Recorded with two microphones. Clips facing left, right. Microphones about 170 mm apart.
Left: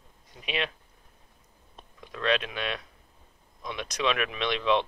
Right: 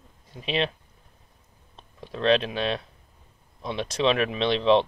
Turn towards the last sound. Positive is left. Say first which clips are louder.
# right 6 dB
turn(degrees=-30)  # may be behind; listen again after turning